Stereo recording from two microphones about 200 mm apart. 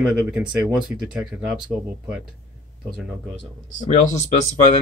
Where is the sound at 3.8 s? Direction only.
40° left (ahead or behind).